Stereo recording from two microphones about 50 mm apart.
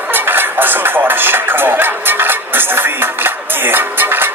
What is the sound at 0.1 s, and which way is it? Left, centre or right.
Speech, right.